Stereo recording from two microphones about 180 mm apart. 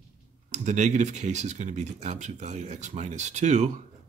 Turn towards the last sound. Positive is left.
turn(degrees=-40)  # may be behind; listen again after turning